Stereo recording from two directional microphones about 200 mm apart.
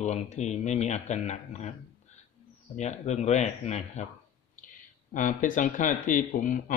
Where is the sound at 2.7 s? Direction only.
35° left (ahead or behind).